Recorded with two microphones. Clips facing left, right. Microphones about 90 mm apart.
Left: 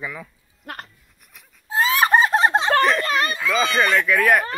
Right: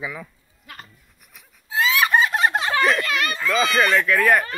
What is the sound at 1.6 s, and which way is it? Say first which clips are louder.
Fowl: left 2 dB; 40° left (ahead or behind).